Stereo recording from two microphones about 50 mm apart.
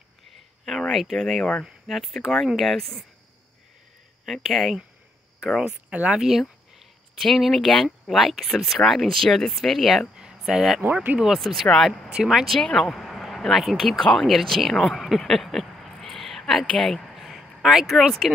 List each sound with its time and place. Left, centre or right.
0.7 s a sound: centre
1.0 s speech: centre
4.3 s speech: centre
5.7 s speech: right
6.1 s speech: centre
7.2 s speech: centre
12.3 s speech: centre
12.5 s speech: centre
17.1 s a sound: centre
18.2 s speech: centre